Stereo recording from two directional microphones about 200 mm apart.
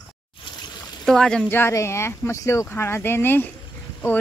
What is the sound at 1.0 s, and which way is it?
Speech, centre (ahead or behind).